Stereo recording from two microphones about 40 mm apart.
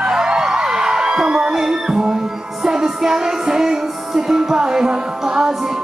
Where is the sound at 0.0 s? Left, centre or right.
Centre.